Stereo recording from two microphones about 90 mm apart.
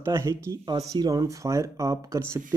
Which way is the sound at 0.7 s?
45° right (ahead or behind).